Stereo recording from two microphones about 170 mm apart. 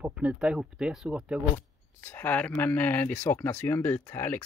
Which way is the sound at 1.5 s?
15° left (ahead or behind).